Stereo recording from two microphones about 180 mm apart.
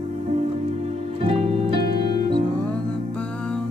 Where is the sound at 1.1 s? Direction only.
35° right (ahead or behind).